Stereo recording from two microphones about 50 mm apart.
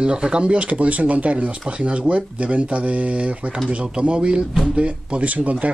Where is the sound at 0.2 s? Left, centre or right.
Centre.